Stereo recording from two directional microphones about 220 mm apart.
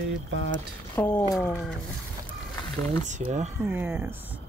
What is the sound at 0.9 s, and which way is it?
Speech, 10° left (ahead or behind).